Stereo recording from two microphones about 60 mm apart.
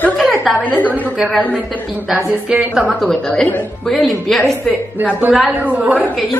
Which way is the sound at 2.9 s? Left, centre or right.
Centre.